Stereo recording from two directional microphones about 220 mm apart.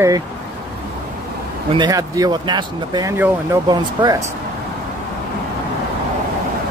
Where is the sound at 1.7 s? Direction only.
20° right (ahead or behind).